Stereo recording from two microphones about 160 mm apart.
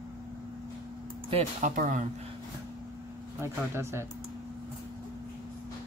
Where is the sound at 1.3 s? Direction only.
45° right (ahead or behind).